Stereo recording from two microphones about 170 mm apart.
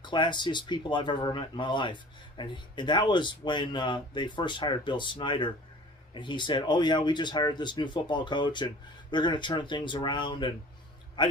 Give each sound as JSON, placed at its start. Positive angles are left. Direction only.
{"t": 0.0, "sound": "speech", "side_deg": 25}